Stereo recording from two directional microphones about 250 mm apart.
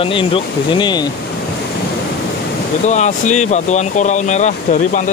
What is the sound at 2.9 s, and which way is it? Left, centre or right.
Speech, left.